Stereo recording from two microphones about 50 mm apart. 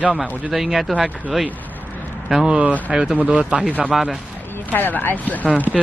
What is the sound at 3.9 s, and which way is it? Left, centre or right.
Speech, centre.